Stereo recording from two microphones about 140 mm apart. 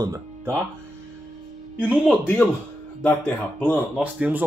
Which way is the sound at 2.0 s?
10° left (ahead or behind).